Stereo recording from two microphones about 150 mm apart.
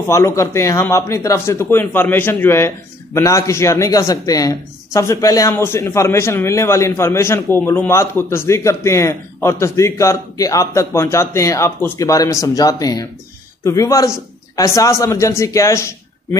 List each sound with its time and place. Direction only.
0.1 s speech: 20° left (ahead or behind)